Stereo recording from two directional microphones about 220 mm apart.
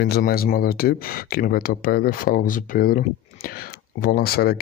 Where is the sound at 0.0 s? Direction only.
45° left (ahead or behind).